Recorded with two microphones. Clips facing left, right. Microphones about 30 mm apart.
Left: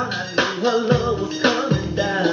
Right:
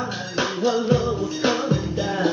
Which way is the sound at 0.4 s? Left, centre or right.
Left.